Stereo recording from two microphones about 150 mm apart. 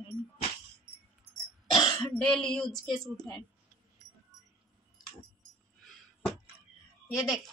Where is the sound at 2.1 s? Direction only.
5° left (ahead or behind).